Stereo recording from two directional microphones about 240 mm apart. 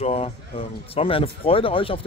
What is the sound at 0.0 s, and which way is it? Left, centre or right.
Speech, left.